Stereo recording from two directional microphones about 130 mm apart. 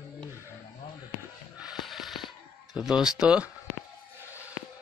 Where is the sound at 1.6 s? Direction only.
Centre (ahead or behind).